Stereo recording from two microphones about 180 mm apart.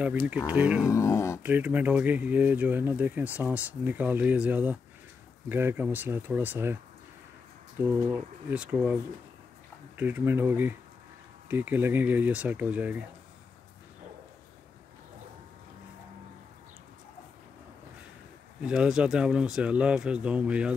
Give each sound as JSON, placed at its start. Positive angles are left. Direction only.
{"t": 0.5, "sound": "speech", "side_deg": -5}
{"t": 0.8, "sound": "speech", "side_deg": 15}
{"t": 1.4, "sound": "speech", "side_deg": -10}
{"t": 7.8, "sound": "speech", "side_deg": -10}
{"t": 18.6, "sound": "speech", "side_deg": -5}